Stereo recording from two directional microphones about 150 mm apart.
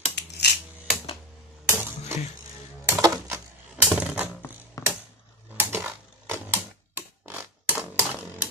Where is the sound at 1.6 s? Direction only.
15° right (ahead or behind).